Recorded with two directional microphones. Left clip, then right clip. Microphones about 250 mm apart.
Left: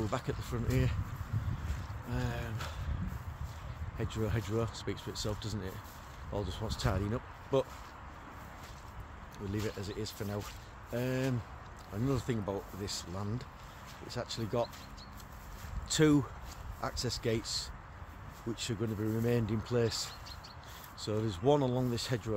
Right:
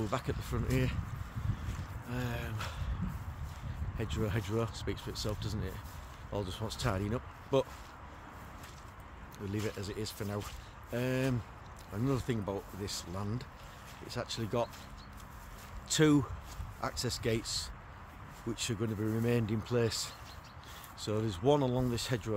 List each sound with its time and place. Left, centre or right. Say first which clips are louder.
0.0 s speech: even; centre
2.1 s speech: right 1 dB; centre
4.0 s speech: even; centre
9.5 s speech: even; centre
15.9 s speech: even; centre